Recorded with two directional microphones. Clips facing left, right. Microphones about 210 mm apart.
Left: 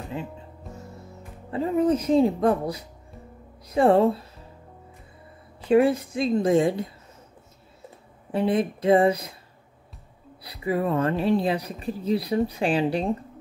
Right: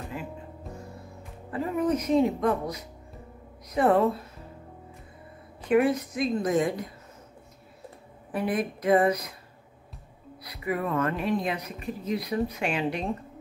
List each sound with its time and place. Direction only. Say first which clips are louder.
0.2 s speech: left 4 dB; 25° left (ahead or behind)
1.5 s a woman's voice: left 4 dB; 25° left (ahead or behind)
5.6 s a woman's voice: left 3 dB; 30° left (ahead or behind)
8.3 s a woman's voice: left 5 dB; 25° left (ahead or behind)
10.4 s speech: left 4 dB; 30° left (ahead or behind)